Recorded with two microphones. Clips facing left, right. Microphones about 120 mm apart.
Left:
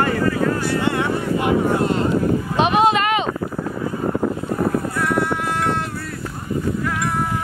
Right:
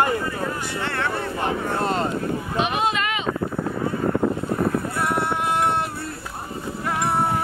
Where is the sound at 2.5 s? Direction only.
85° left.